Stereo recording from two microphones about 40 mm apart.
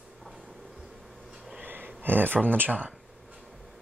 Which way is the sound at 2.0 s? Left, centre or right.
Right.